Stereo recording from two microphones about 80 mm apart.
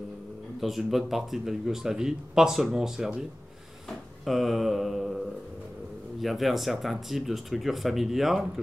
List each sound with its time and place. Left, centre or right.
0.6 s speech: centre
6.2 s speech: centre